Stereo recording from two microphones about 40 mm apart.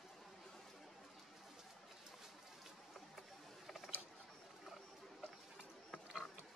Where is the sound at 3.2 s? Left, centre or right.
Centre.